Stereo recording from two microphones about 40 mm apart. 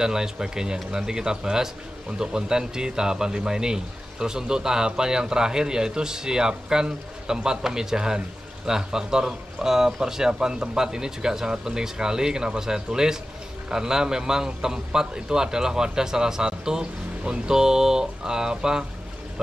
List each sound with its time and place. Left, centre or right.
0.0 s a man's voice: centre